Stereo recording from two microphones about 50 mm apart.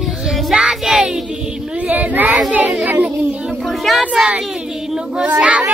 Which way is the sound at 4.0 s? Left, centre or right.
Centre.